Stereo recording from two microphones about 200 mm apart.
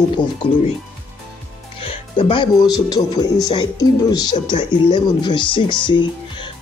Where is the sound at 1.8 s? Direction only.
25° left (ahead or behind).